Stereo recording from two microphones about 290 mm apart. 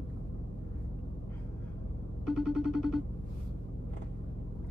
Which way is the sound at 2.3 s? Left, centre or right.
Centre.